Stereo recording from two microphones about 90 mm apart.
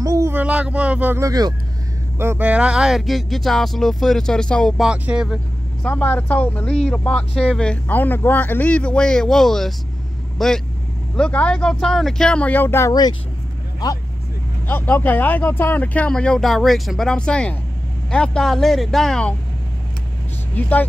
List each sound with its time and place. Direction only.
0.0 s a sound: 40° right (ahead or behind)
0.3 s speech: 15° right (ahead or behind)
1.2 s speech: 45° right (ahead or behind)
2.1 s speech: 25° right (ahead or behind)
2.4 s speech: 15° right (ahead or behind); by 4.7 s 10° left (ahead or behind)
4.7 s speech: 10° right (ahead or behind)
5.9 s speech: 20° left (ahead or behind)
14.7 s speech: 20° left (ahead or behind)
20.5 s speech: 20° left (ahead or behind)